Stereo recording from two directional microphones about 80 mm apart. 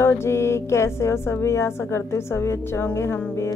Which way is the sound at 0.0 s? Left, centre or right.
Left.